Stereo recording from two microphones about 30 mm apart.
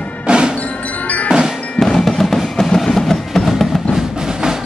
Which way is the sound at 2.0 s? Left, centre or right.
Centre.